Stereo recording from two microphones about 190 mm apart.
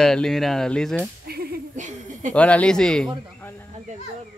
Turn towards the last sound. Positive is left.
turn(degrees=5)  # may be behind; listen again after turning